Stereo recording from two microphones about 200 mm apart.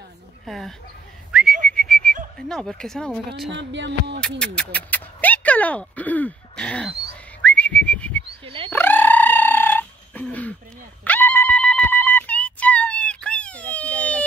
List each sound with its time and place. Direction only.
0.5 s speech: centre (ahead or behind)
1.3 s whistling: 5° right (ahead or behind)
2.3 s speech: centre (ahead or behind)
3.5 s music: 60° right (ahead or behind)
4.4 s speech: 5° left (ahead or behind)
7.4 s whistling: 5° left (ahead or behind)
8.6 s a sound: 10° left (ahead or behind)
11.1 s goat: 10° left (ahead or behind)